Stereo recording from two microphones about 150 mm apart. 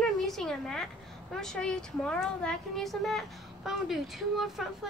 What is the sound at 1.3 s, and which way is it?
A woman's voice, 5° left (ahead or behind).